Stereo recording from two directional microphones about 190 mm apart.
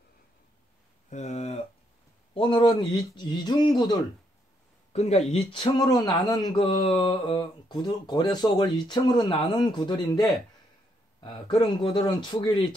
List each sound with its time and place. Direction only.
1.1 s a sound: 35° left (ahead or behind)
2.3 s speech: 25° left (ahead or behind)
4.9 s speech: 35° left (ahead or behind)